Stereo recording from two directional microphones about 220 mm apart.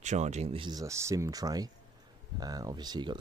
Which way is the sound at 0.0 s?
30° right (ahead or behind).